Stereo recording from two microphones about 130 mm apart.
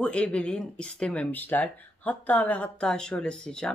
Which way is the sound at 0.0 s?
10° left (ahead or behind).